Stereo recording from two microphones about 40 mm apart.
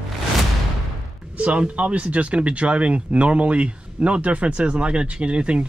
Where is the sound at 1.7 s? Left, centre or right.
Right.